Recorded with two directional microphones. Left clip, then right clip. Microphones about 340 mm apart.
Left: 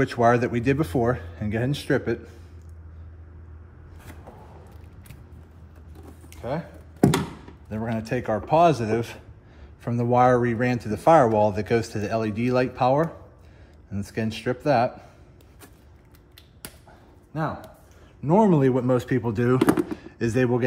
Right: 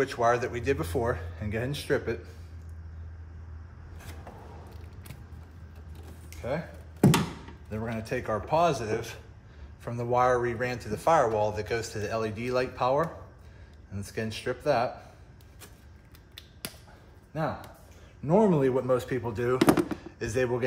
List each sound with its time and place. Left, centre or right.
0.0 s speech: left
6.3 s a sound: centre
7.7 s speech: centre
18.2 s speech: centre
19.6 s speech: centre
20.0 s speech: left